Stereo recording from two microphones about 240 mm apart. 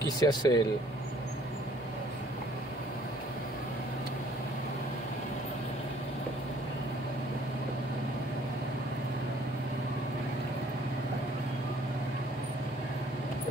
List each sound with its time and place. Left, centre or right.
0.2 s speech: centre